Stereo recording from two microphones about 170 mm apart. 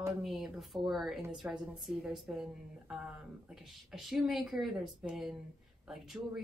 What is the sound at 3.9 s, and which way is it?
Speech, centre (ahead or behind).